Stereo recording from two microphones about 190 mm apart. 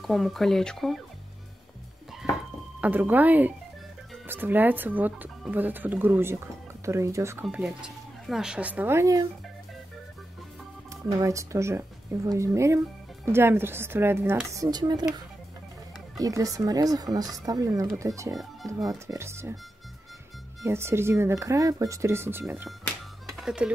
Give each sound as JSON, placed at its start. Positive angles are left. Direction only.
{"t": 0.0, "sound": "speech", "side_deg": 0}
{"t": 2.2, "sound": "a sound", "side_deg": -5}
{"t": 2.8, "sound": "speech", "side_deg": -10}
{"t": 7.4, "sound": "speech", "side_deg": -5}
{"t": 10.9, "sound": "speech", "side_deg": -15}
{"t": 16.2, "sound": "speech", "side_deg": -15}
{"t": 18.3, "sound": "speech", "side_deg": 0}
{"t": 18.9, "sound": "speech", "side_deg": -15}
{"t": 20.6, "sound": "speech", "side_deg": -15}
{"t": 23.2, "sound": "music", "side_deg": 0}